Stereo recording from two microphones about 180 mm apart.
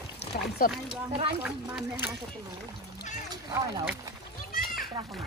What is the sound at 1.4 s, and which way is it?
Speech, 5° right (ahead or behind).